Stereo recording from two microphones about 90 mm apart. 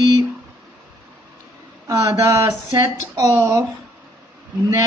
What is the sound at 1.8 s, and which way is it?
A woman's voice, 35° right (ahead or behind).